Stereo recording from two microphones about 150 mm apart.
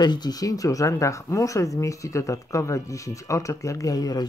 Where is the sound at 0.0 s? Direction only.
30° left (ahead or behind).